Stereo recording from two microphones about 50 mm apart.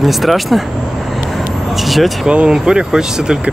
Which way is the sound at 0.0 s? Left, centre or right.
Centre.